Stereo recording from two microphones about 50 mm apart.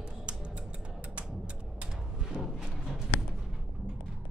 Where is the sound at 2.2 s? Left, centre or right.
Centre.